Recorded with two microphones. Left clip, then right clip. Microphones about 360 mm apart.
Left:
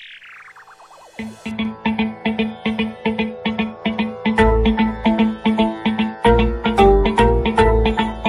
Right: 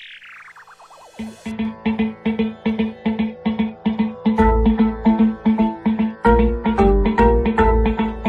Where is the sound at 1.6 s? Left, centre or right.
Left.